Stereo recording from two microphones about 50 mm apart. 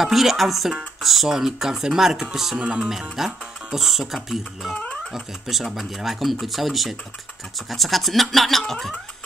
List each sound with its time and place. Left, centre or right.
0.0 s speech: centre
2.5 s speech: centre
3.2 s speech: centre